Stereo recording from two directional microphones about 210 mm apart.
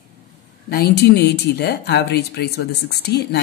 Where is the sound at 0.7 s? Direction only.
50° left (ahead or behind).